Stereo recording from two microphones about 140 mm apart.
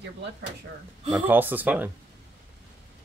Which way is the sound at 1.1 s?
15° right (ahead or behind).